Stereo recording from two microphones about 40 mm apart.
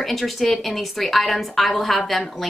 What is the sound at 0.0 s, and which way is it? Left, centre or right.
Speech, centre.